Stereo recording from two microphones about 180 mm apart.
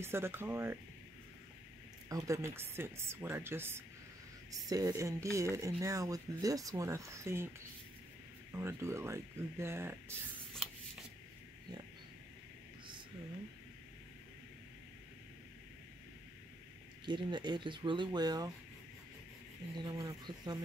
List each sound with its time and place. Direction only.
0.0 s speech: 15° right (ahead or behind)
2.0 s speech: 20° right (ahead or behind)
8.5 s speech: 15° right (ahead or behind)
17.0 s speech: 25° right (ahead or behind)
19.8 s speech: 20° right (ahead or behind)